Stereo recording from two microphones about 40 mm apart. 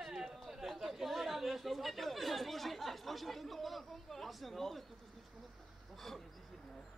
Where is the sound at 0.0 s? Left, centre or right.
Centre.